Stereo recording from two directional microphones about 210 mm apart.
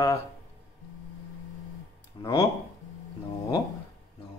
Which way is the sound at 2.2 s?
15° left (ahead or behind).